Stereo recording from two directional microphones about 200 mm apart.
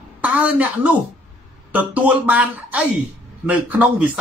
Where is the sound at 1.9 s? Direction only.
5° right (ahead or behind).